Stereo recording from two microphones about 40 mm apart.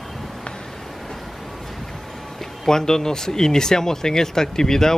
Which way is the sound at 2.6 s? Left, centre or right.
Centre.